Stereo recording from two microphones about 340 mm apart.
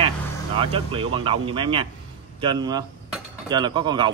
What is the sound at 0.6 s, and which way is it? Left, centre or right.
Speech, centre.